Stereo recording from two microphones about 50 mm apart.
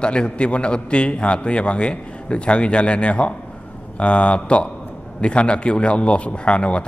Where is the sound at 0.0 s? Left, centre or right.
Left.